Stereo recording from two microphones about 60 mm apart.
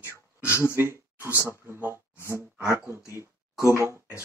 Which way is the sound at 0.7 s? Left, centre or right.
Right.